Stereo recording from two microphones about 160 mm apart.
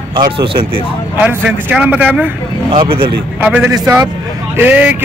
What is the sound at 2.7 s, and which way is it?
Speech, 35° right (ahead or behind).